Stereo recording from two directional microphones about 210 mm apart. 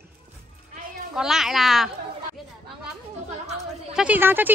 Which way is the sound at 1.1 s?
Centre (ahead or behind).